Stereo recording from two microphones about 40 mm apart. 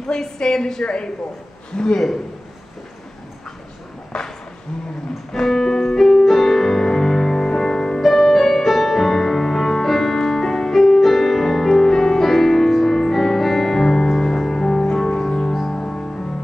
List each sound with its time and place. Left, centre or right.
0.0 s a woman's voice: centre
5.3 s music: centre
6.0 s music: centre
8.0 s music: centre